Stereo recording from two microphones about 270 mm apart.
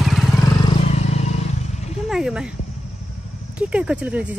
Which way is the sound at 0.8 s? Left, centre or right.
Left.